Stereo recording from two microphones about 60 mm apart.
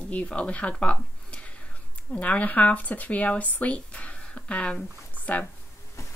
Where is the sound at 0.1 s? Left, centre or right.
Centre.